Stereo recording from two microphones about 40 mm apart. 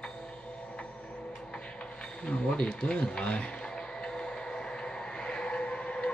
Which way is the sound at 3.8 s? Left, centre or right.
Centre.